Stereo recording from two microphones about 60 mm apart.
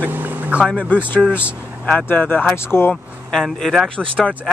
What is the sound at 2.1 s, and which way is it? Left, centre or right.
Speech, left.